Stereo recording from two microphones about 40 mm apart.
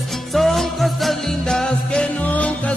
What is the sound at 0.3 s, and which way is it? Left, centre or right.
Music, centre.